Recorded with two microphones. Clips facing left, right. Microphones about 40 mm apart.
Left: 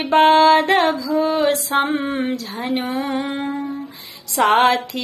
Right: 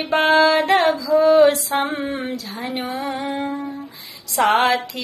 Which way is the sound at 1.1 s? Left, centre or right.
Centre.